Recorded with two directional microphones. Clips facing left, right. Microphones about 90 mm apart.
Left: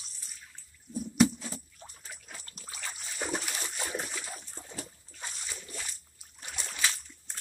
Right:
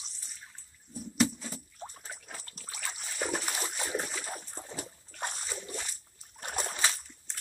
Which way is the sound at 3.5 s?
35° right (ahead or behind).